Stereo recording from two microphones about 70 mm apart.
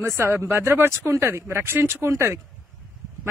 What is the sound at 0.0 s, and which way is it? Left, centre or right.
Speech, right.